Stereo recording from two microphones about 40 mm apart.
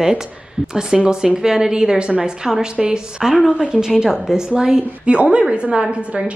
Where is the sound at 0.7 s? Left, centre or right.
Centre.